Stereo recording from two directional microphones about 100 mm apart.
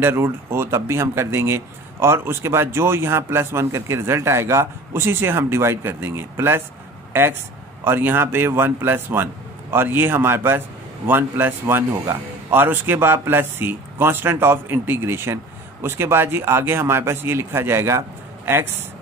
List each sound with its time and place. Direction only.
0.0 s speech: 25° right (ahead or behind)